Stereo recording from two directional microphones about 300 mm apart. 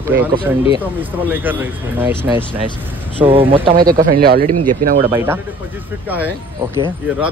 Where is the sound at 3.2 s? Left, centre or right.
Centre.